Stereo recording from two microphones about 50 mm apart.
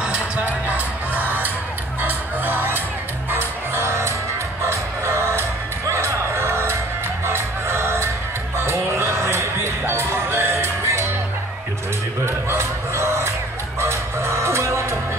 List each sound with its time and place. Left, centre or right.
0.0 s music: right
12.3 s a sound: right
13.7 s music: right